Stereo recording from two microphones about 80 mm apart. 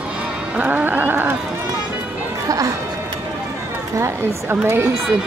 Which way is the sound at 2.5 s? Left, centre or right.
Right.